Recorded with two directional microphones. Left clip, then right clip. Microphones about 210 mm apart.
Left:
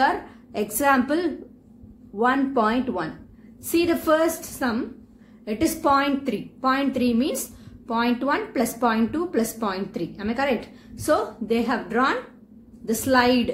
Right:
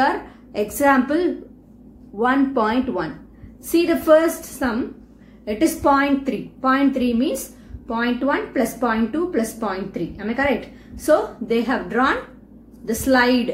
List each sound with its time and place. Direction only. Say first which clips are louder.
0.0 s a woman's voice: right 2 dB; 25° left (ahead or behind)